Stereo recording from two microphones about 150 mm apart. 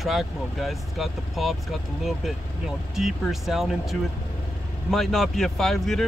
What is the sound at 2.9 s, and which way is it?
Speech, centre (ahead or behind).